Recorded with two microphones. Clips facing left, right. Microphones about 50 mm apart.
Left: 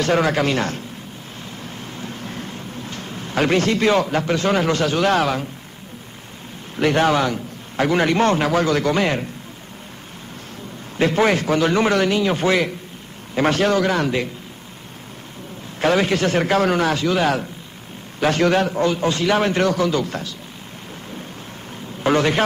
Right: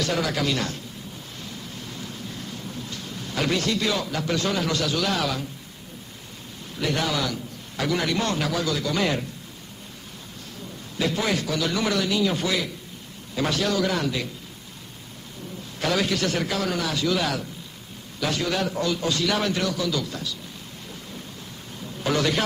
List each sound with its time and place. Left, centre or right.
0.0 s a man's voice: left
1.6 s a sound: left
6.8 s a man's voice: left
11.0 s a man's voice: left
15.8 s a man's voice: left
22.0 s a man's voice: left